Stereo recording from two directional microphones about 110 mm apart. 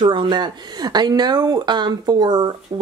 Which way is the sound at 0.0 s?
45° right (ahead or behind).